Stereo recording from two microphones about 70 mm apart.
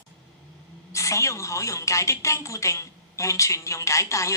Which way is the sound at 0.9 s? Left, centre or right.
Left.